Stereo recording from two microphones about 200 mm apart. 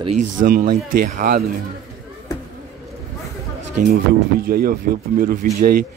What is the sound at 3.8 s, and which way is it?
Speech, 50° right (ahead or behind).